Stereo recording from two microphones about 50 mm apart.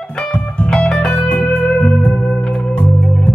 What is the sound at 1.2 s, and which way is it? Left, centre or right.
Music, left.